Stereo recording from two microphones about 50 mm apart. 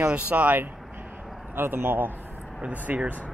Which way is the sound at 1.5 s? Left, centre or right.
Right.